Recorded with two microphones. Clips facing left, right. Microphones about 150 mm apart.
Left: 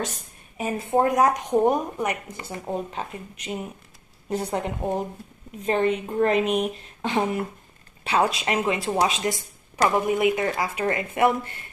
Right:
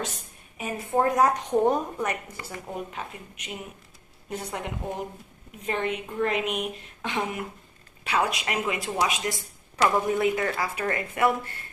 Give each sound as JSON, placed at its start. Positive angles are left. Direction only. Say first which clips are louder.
{"t": 0.6, "sound": "a woman's voice", "louder": "left 3 dB", "side_deg": 25}
{"t": 10.0, "sound": "a woman's voice", "louder": "left 3 dB", "side_deg": 15}